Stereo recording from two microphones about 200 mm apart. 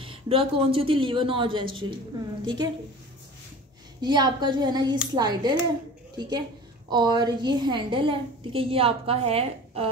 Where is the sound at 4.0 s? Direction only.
20° right (ahead or behind).